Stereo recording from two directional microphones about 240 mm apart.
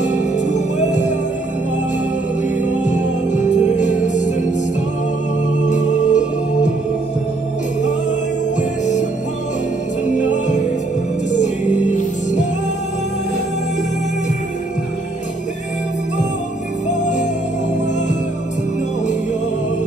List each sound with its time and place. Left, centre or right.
0.0 s music: left
2.8 s music: left
5.7 s music: left
8.5 s music: left
10.1 s music: left
17.0 s music: left